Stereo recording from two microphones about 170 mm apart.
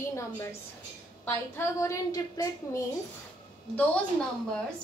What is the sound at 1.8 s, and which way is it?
A woman's voice, 20° left (ahead or behind).